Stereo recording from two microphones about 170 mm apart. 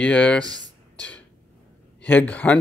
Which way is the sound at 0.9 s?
10° left (ahead or behind).